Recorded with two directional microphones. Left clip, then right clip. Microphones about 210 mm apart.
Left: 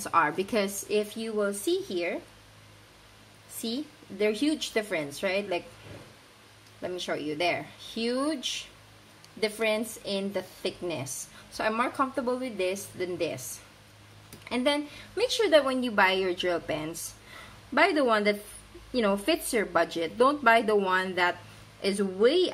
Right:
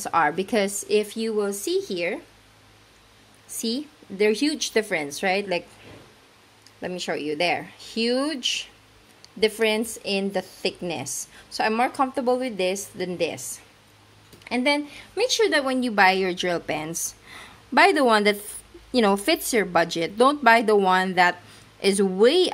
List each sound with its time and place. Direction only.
0.0 s a woman's voice: 35° right (ahead or behind)
3.6 s a woman's voice: 45° right (ahead or behind)
6.8 s a woman's voice: 40° right (ahead or behind)
14.5 s a woman's voice: 40° right (ahead or behind)